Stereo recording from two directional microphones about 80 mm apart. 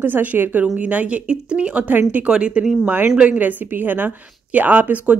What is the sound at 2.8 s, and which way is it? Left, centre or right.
A woman's voice, right.